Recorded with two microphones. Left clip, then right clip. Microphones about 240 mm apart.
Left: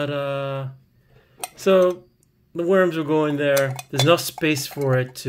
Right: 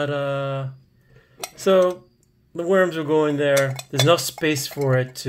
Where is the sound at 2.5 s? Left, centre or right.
Centre.